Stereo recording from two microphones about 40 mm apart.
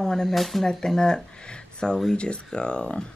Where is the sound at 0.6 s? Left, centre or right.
Centre.